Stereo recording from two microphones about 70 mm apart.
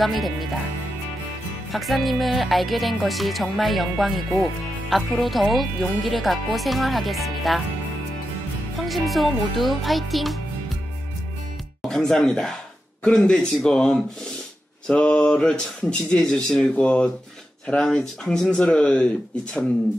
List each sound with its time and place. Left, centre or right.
0.0 s speech: centre
1.7 s speech: centre
8.8 s speech: centre
11.9 s speech: centre